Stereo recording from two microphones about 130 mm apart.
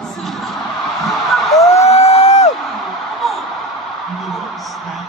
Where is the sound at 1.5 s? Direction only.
25° left (ahead or behind).